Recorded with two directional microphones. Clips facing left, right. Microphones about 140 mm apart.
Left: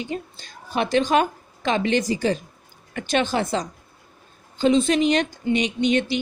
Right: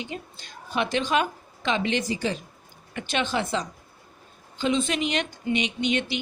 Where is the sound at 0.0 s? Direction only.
40° left (ahead or behind).